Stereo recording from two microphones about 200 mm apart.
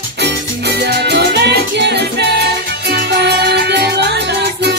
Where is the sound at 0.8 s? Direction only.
60° right (ahead or behind).